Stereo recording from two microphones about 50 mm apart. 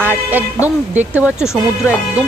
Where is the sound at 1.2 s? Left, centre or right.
Centre.